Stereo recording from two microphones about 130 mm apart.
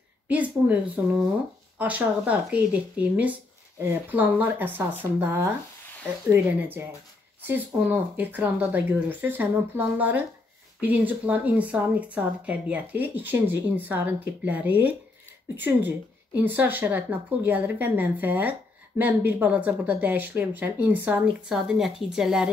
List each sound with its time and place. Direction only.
0.3 s a woman's voice: 10° right (ahead or behind)
21.5 s a woman's voice: 5° right (ahead or behind)